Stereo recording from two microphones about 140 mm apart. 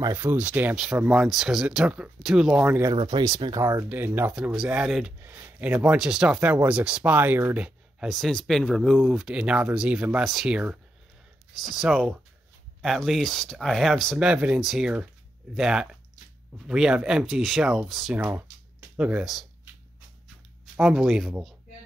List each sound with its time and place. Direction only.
0.2 s speech: 15° right (ahead or behind)
3.0 s speech: 35° right (ahead or behind)
3.6 s speech: 20° right (ahead or behind)
4.3 s speech: 5° right (ahead or behind)
5.2 s speech: 15° right (ahead or behind); by 18.1 s centre (ahead or behind)
18.1 s speech: 15° right (ahead or behind)
20.7 s speech: 5° right (ahead or behind)